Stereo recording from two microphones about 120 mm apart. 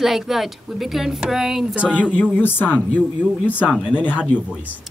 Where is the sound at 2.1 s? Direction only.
15° left (ahead or behind).